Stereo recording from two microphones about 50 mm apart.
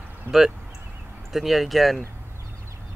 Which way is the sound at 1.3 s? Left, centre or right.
Centre.